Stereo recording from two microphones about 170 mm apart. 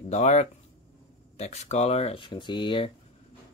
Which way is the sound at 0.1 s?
40° left (ahead or behind).